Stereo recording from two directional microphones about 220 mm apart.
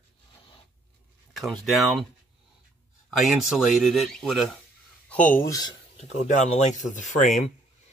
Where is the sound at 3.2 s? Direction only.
Centre (ahead or behind).